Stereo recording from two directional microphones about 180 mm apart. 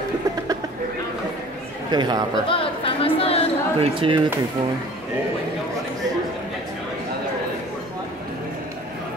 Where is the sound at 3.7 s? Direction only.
30° right (ahead or behind).